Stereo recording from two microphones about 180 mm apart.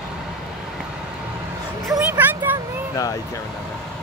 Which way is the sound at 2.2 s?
10° right (ahead or behind).